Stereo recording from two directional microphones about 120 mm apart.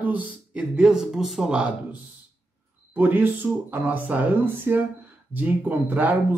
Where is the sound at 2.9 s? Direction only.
15° right (ahead or behind).